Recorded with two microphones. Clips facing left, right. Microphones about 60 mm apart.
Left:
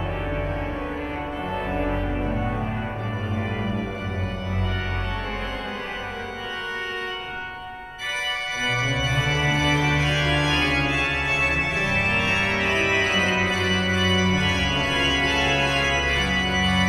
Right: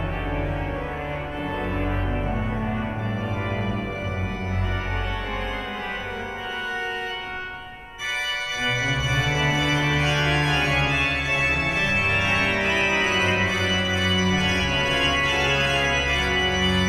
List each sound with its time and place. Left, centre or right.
1.7 s music: centre
8.8 s organ: centre